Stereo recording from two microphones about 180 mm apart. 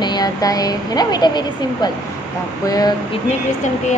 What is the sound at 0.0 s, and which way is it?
A woman's voice, 20° left (ahead or behind).